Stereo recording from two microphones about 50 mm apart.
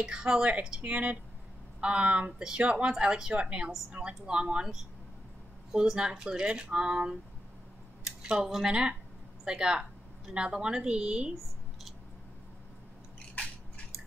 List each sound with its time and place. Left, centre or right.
0.0 s speech: centre
5.7 s a woman's voice: centre